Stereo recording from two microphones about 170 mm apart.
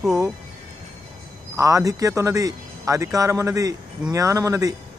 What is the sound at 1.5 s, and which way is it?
Speech, 20° right (ahead or behind).